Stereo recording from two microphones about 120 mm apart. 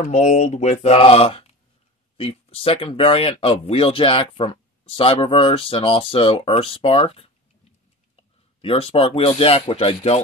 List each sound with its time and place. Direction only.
0.0 s speech: 90° left; by 7.2 s 55° left (ahead or behind)
8.5 s speech: 50° left (ahead or behind)